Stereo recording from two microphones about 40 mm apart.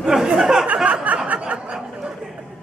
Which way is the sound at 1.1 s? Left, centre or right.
Right.